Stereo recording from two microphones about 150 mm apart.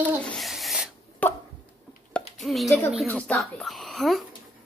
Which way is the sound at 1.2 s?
10° left (ahead or behind).